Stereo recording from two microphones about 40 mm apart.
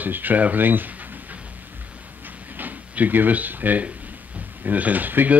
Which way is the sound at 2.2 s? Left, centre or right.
Right.